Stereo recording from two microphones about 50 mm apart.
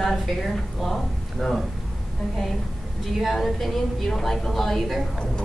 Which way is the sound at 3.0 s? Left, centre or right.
Centre.